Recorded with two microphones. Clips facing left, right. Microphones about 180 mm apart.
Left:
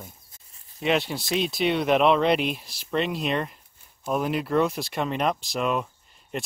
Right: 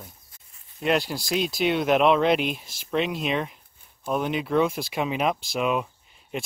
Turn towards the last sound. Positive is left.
turn(degrees=0)  # may be behind; listen again after turning